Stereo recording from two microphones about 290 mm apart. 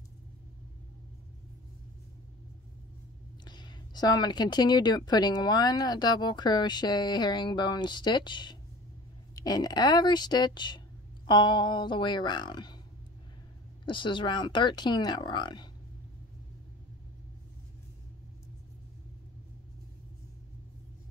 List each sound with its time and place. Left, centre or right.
3.4 s speech: centre
13.8 s speech: centre